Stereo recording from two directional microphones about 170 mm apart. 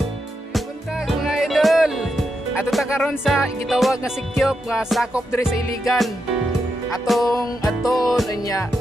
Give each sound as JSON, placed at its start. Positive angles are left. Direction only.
{"t": 0.5, "sound": "music", "side_deg": 0}
{"t": 5.3, "sound": "music", "side_deg": 15}
{"t": 7.2, "sound": "music", "side_deg": 20}
{"t": 7.8, "sound": "music", "side_deg": 0}
{"t": 8.3, "sound": "music", "side_deg": 20}